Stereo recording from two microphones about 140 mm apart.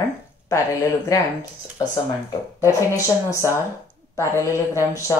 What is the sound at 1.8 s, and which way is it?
Speech, 25° left (ahead or behind).